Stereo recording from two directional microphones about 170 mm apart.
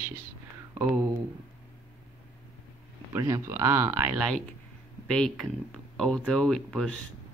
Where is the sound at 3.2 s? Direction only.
15° right (ahead or behind).